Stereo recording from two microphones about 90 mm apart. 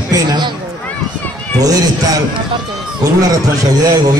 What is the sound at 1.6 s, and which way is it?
Speech, 40° right (ahead or behind).